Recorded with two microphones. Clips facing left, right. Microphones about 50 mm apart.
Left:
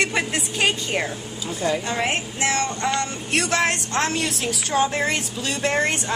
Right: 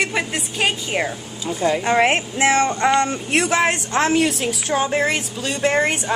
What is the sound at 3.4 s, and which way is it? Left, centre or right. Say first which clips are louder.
Music: right 3 dB; centre.